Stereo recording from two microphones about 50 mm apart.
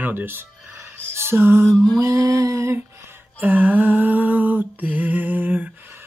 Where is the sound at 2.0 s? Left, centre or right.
Right.